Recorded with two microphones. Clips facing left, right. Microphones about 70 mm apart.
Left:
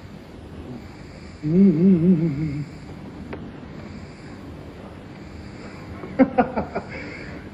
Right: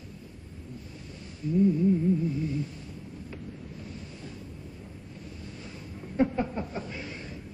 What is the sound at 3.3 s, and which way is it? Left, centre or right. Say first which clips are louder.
Wind noise: left 7 dB; left.